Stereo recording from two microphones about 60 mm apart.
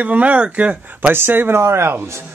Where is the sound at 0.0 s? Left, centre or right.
Right.